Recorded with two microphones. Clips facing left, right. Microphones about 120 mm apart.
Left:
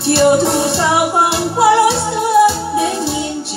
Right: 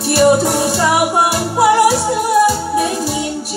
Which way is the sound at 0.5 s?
Centre (ahead or behind).